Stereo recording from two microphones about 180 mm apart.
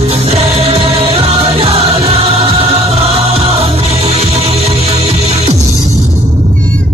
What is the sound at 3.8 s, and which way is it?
Music, 35° right (ahead or behind).